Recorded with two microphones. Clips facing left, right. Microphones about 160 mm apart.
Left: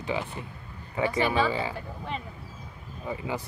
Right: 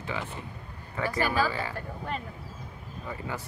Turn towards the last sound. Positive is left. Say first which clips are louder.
# left 4 dB
turn(degrees=15)  # may be behind; listen again after turning